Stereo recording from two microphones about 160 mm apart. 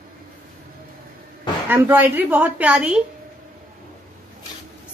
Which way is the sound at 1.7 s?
10° right (ahead or behind).